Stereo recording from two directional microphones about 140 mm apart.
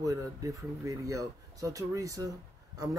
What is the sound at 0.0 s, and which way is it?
Speech, 25° right (ahead or behind).